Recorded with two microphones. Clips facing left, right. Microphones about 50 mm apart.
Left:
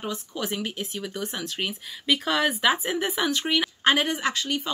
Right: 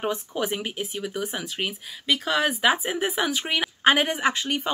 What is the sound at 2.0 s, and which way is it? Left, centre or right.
Speech, centre.